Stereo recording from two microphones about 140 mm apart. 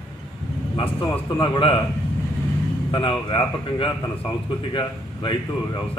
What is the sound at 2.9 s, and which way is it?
A man's voice, 35° left (ahead or behind).